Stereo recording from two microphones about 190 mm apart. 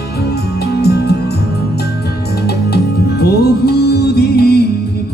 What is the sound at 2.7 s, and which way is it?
Music, 55° left (ahead or behind).